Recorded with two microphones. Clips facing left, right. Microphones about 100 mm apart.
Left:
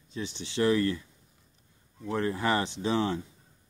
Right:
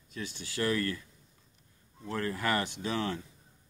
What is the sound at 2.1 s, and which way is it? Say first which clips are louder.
Speech: left 4 dB; 25° left (ahead or behind).